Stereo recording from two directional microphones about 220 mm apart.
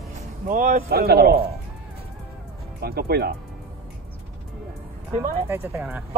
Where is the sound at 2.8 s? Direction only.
45° right (ahead or behind).